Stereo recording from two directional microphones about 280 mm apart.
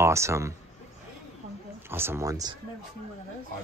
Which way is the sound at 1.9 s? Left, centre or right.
Centre.